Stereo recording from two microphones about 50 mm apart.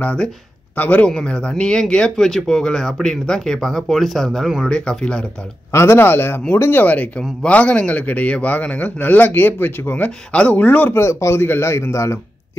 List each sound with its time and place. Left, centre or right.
0.0 s speech: left
0.7 s a man's voice: left
1.0 s speech: centre
4.6 s speech: centre
5.7 s speech: left
6.8 s a man's voice: left
10.3 s speech: left
10.6 s a man's voice: left
10.9 s speech: left
11.4 s a man's voice: left